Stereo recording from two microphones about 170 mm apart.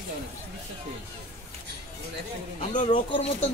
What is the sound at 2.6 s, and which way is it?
Speech, 45° left (ahead or behind).